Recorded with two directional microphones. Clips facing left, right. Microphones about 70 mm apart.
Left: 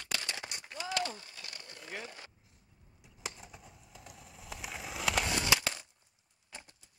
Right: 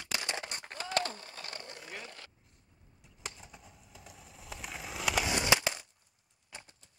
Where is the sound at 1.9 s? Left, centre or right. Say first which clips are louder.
Left 2 dB; centre.